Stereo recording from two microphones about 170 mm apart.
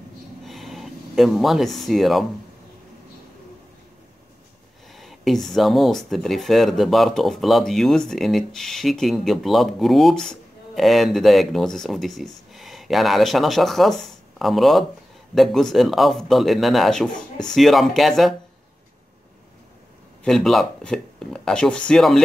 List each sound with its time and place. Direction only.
0.5 s a sound: centre (ahead or behind)
4.9 s speech: centre (ahead or behind)
17.1 s speech: 25° left (ahead or behind)
17.6 s speech: centre (ahead or behind)
20.2 s speech: centre (ahead or behind)